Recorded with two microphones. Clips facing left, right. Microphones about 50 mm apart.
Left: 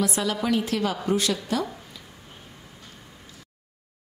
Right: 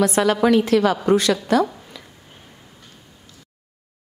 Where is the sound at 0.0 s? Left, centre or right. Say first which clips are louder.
Right 9 dB; right.